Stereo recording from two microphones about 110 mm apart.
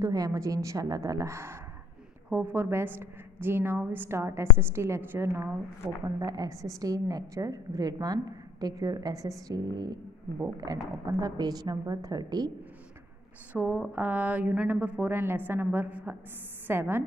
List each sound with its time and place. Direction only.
0.0 s a woman's voice: 30° right (ahead or behind)
13.5 s a woman's voice: 15° right (ahead or behind)